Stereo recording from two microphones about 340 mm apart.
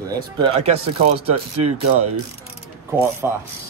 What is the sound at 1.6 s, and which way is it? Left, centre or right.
Speech, right.